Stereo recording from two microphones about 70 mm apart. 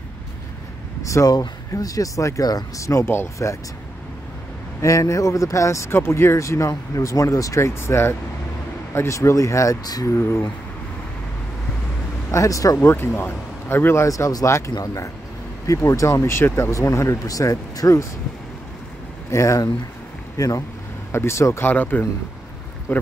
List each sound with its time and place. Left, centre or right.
1.0 s speech: left
1.3 s speech: left
2.9 s speech: left
4.8 s speech: left
12.3 s speech: left
12.7 s speech: left
14.0 s speech: left
15.6 s speech: left
16.3 s speech: left
16.7 s speech: left
19.3 s speech: left
21.1 s speech: left
21.6 s speech: left